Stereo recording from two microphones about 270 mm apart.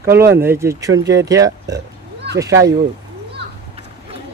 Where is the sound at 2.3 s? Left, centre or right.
Right.